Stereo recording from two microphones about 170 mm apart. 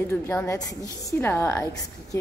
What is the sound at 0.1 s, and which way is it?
A woman's voice, 15° left (ahead or behind).